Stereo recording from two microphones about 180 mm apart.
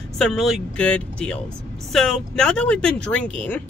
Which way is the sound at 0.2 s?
Centre (ahead or behind).